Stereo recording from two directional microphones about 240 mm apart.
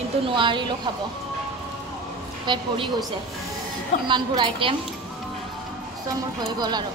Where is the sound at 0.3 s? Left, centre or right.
Centre.